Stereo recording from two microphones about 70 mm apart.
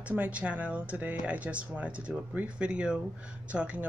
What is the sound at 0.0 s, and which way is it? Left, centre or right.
Speech, right.